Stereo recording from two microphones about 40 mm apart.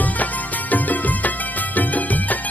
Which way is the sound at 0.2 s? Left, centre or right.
Left.